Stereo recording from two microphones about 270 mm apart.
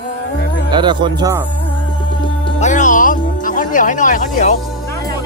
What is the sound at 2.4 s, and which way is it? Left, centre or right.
Music, left.